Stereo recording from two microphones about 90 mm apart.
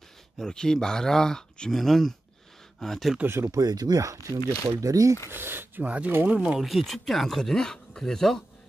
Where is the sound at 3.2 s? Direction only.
25° right (ahead or behind).